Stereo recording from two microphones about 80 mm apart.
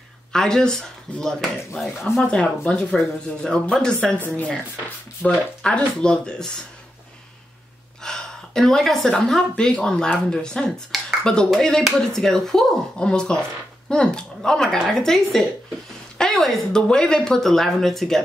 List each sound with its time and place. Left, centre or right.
0.3 s speech: centre
8.0 s speech: centre
10.9 s speech: centre